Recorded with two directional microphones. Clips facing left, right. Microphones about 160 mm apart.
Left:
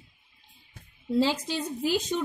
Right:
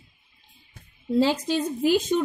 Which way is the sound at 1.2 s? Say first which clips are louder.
Right 7 dB; 55° right (ahead or behind).